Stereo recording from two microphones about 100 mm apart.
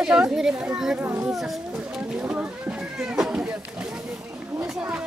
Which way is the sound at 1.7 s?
10° right (ahead or behind).